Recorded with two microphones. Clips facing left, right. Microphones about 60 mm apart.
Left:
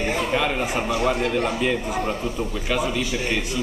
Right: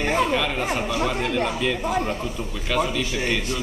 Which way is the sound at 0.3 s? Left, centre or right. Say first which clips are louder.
Left 1 dB; centre.